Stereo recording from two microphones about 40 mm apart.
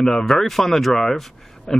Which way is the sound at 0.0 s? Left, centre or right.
Centre.